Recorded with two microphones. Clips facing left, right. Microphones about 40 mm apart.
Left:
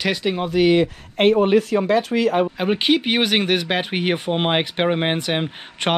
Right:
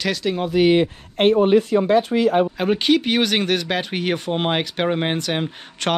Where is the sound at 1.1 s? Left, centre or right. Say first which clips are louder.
Even; left.